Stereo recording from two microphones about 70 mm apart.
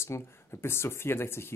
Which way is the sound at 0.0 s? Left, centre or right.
Left.